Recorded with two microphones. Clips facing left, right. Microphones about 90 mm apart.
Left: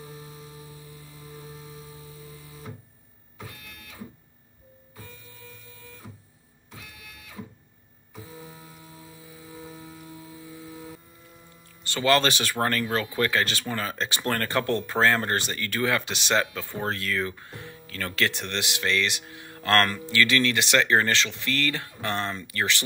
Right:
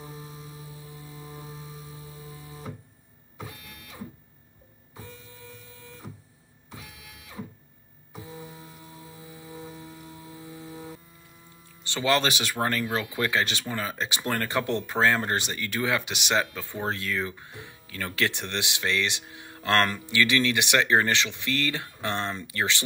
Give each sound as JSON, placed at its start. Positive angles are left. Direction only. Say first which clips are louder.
{"t": 0.0, "sound": "vehicle", "louder": "right 1 dB", "side_deg": -25}
{"t": 0.8, "sound": "music", "louder": "right 2 dB", "side_deg": -20}
{"t": 5.7, "sound": "guitar", "louder": "right 1 dB", "side_deg": -20}
{"t": 8.1, "sound": "a sound", "louder": "right 2 dB", "side_deg": -20}
{"t": 10.4, "sound": "a sound", "louder": "right 2 dB", "side_deg": -20}
{"t": 11.9, "sound": "speech", "louder": "left 2 dB", "side_deg": -15}